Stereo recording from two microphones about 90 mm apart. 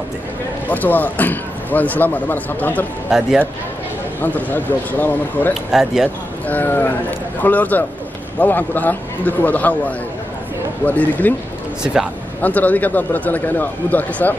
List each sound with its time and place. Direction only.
0.7 s a man's voice: 20° left (ahead or behind)
3.1 s a man's voice: 5° right (ahead or behind)
4.2 s a man's voice: 20° left (ahead or behind)
5.5 s speech: 5° right (ahead or behind)
6.4 s a man's voice: 20° left (ahead or behind)
11.8 s a man's voice: 10° right (ahead or behind)
12.4 s a man's voice: 20° left (ahead or behind)